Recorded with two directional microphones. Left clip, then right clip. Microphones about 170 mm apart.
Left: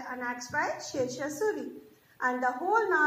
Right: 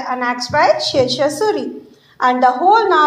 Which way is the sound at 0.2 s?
30° right (ahead or behind).